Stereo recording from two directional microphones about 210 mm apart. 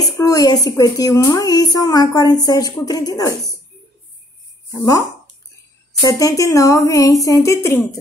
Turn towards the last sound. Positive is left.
turn(degrees=15)  # may be behind; listen again after turning